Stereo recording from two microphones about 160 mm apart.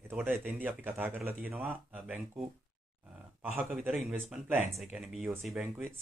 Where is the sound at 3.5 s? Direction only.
10° right (ahead or behind).